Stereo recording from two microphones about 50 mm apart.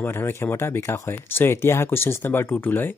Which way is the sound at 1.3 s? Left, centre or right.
Left.